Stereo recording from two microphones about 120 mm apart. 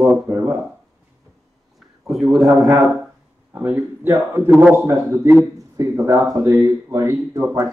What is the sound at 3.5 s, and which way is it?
Speech, 15° right (ahead or behind).